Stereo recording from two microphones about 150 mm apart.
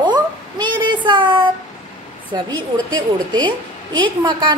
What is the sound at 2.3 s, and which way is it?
A woman's voice, 30° right (ahead or behind).